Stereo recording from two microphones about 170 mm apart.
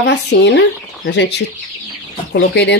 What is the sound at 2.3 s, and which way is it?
Speech, 90° left.